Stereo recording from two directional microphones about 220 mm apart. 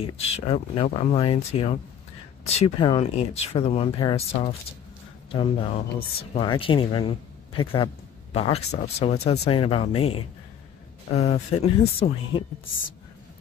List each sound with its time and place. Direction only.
0.0 s a man's voice: 25° left (ahead or behind)